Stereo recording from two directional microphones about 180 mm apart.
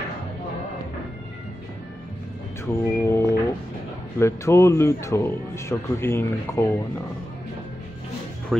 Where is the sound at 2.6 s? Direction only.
15° left (ahead or behind).